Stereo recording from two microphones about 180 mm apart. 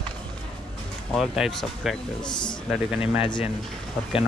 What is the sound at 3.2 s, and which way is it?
Speech, 30° left (ahead or behind).